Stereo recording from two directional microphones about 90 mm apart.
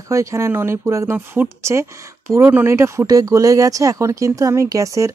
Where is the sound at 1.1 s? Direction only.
20° right (ahead or behind).